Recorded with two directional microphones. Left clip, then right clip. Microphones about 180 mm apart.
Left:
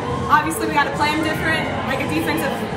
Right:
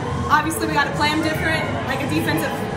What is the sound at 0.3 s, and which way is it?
Speech, 15° left (ahead or behind).